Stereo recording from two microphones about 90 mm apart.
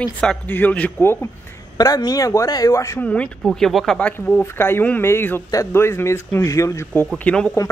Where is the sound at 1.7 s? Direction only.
45° left (ahead or behind).